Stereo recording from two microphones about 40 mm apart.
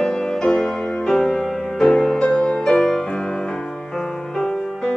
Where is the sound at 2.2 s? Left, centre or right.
Left.